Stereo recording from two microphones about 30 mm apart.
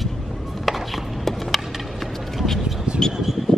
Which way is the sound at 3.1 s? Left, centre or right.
Centre.